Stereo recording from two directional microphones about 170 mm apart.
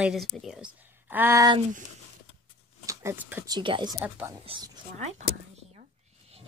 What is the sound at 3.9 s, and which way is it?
Speech, 10° right (ahead or behind).